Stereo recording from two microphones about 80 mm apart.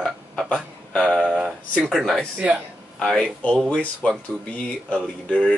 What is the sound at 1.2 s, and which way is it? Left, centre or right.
Speech, centre.